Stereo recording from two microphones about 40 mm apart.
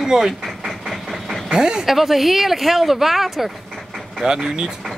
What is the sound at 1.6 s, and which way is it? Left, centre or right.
Speech, centre.